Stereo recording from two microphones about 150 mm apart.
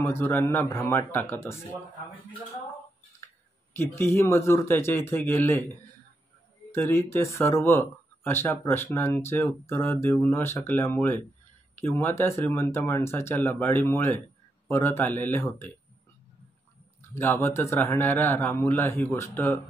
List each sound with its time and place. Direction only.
0.0 s speech: 15° left (ahead or behind)
3.7 s speech: 15° left (ahead or behind)
6.7 s speech: 15° left (ahead or behind)
17.1 s speech: 15° left (ahead or behind)